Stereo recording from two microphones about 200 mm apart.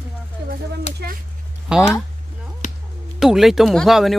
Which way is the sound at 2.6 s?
35° left (ahead or behind).